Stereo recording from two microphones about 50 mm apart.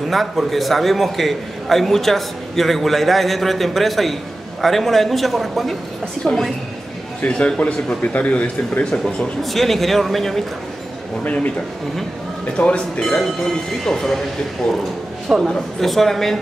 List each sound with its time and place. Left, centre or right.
0.1 s a man's voice: centre
7.2 s a man's voice: left
9.4 s a man's voice: centre
12.5 s a man's voice: left
15.3 s a man's voice: centre
15.8 s a man's voice: centre